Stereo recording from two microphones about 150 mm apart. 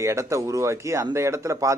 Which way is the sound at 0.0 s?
20° right (ahead or behind).